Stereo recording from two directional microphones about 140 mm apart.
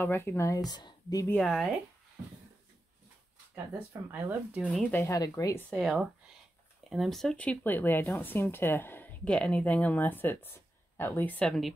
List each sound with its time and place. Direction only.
0.0 s speech: 15° left (ahead or behind)
1.2 s speech: 5° left (ahead or behind)
4.1 s speech: 10° right (ahead or behind)
4.9 s speech: 20° left (ahead or behind)
5.7 s speech: centre (ahead or behind)